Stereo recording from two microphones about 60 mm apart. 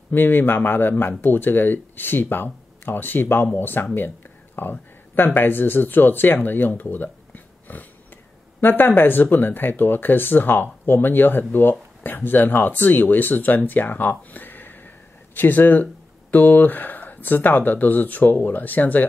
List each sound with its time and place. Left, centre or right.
0.1 s speech: left